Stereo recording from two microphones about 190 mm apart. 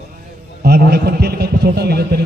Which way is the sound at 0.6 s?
55° right (ahead or behind).